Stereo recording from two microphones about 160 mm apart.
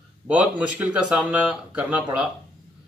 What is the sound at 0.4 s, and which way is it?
A man's voice, 10° right (ahead or behind).